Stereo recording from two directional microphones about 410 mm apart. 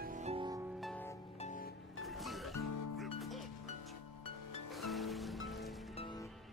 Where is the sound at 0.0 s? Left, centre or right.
Centre.